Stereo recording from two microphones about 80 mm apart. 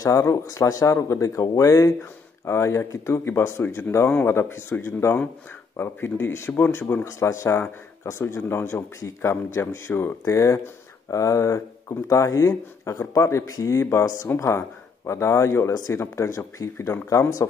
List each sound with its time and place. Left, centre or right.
0.0 s speech: left
7.1 s speech: left